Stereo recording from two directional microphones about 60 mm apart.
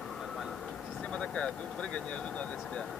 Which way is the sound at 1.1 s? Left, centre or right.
Centre.